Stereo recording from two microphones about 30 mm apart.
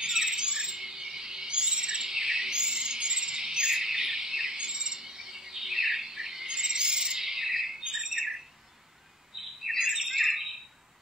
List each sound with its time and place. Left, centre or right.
0.0 s bird: centre
9.8 s bird: centre
10.0 s bird: centre